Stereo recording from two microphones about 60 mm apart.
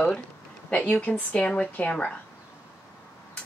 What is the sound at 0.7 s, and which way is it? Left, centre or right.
Speech, left.